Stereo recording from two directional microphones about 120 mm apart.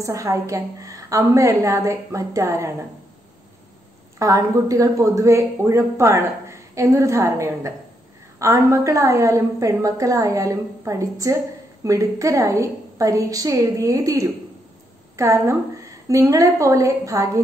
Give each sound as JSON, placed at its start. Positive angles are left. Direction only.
{"t": 0.0, "sound": "speech", "side_deg": -25}
{"t": 4.2, "sound": "speech", "side_deg": -30}